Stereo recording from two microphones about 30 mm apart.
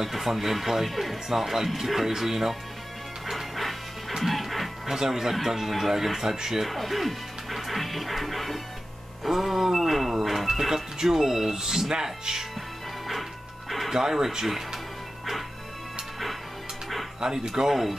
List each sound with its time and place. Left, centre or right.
0.0 s speech: centre
3.3 s music: centre
4.9 s speech: centre
5.3 s music: centre
6.2 s speech: centre
6.7 s speech: centre
9.2 s music: centre
10.7 s speech: centre
11.5 s speech: right
13.8 s speech: centre
17.2 s speech: right
17.6 s music: centre